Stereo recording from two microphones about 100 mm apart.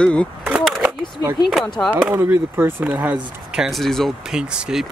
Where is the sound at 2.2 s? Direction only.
25° right (ahead or behind); by 3.8 s 5° right (ahead or behind).